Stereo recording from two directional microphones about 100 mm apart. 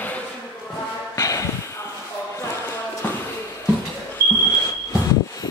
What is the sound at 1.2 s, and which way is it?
Snort, 30° left (ahead or behind).